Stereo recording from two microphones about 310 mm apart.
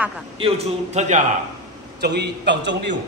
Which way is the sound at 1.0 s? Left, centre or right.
Right.